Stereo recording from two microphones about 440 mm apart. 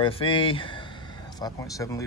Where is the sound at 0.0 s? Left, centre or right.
Centre.